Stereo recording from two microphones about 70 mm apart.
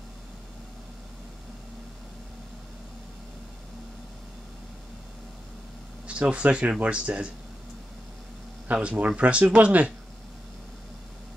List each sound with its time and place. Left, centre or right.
6.0 s speech: centre
8.6 s speech: centre